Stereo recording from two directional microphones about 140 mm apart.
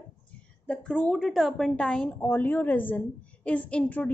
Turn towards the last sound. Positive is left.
turn(degrees=10)  # may be behind; listen again after turning